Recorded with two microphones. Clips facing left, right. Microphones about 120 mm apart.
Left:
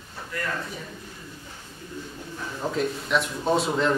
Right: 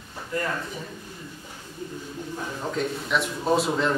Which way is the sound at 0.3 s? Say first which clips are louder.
Right 5 dB; 25° right (ahead or behind).